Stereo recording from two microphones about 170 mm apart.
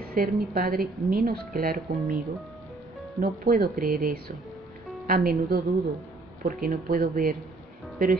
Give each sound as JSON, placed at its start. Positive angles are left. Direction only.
{"t": 0.0, "sound": "speech", "side_deg": -60}